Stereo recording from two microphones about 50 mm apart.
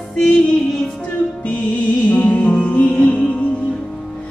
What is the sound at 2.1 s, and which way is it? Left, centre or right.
Music, left.